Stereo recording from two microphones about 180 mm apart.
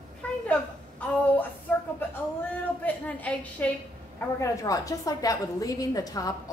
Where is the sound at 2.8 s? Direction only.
10° left (ahead or behind).